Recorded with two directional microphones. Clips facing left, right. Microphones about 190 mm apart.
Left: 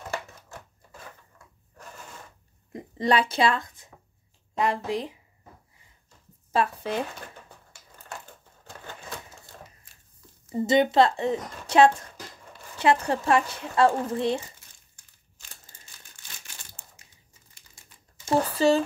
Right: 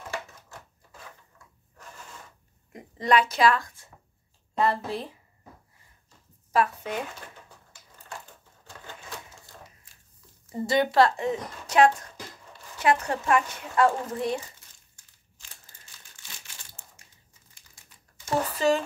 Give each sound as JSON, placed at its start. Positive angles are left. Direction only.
{"t": 2.7, "sound": "a woman's voice", "side_deg": 30}
{"t": 6.5, "sound": "speech", "side_deg": 30}
{"t": 10.5, "sound": "speech", "side_deg": 20}
{"t": 18.2, "sound": "speech", "side_deg": 30}